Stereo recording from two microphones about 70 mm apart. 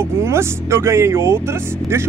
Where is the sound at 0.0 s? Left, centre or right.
Right.